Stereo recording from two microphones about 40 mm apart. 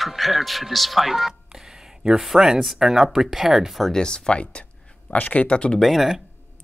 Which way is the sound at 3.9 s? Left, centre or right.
Left.